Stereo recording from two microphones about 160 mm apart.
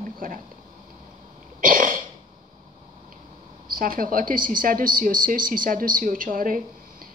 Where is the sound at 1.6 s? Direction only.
60° right (ahead or behind).